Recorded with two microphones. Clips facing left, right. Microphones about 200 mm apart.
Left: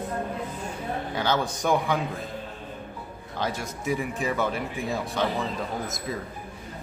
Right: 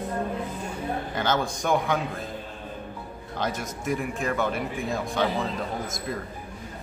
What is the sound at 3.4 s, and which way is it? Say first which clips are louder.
Speech: even; centre (ahead or behind).